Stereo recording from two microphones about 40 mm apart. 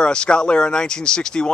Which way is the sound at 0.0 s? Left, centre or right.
Left.